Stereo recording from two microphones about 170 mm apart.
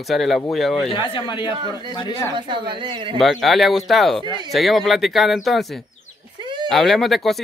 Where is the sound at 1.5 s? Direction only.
30° right (ahead or behind).